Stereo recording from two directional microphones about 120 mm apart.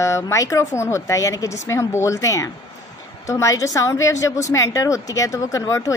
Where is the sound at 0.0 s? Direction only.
25° left (ahead or behind).